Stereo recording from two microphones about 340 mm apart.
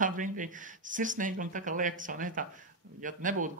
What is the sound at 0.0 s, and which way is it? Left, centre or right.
Speech, right.